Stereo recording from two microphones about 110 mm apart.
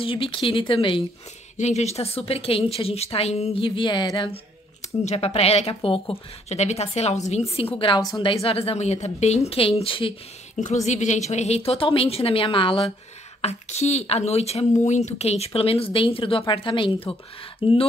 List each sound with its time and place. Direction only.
0.0 s speech: 55° left (ahead or behind)
1.6 s a woman's voice: 85° left; by 4.3 s 45° left (ahead or behind)
5.0 s speech: 70° left (ahead or behind)
6.5 s a woman's voice: 80° left; by 10.1 s 55° left (ahead or behind)
10.5 s a woman's voice: 90° left; by 12.8 s 50° left (ahead or behind)
13.4 s speech: 80° left
14.9 s a woman's voice: 90° left; by 17.8 s 55° left (ahead or behind)